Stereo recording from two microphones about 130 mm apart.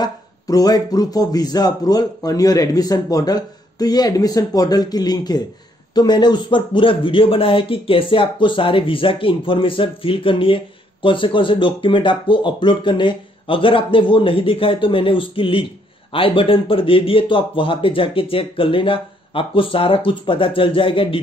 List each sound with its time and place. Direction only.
0.0 s a man's voice: 30° left (ahead or behind)